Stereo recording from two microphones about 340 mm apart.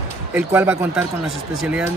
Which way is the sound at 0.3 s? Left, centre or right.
Centre.